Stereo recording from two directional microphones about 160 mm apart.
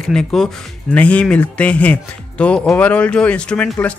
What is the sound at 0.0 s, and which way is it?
Speech, 5° left (ahead or behind).